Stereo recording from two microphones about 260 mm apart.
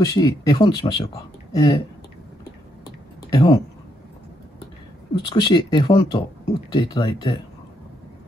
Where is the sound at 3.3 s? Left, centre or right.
Centre.